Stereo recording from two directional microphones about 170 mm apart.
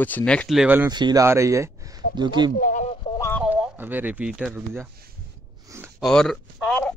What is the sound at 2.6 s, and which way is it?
Speech, 55° left (ahead or behind).